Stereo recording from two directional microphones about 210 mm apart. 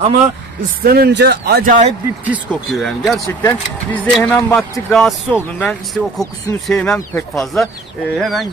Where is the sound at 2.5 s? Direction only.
Centre (ahead or behind).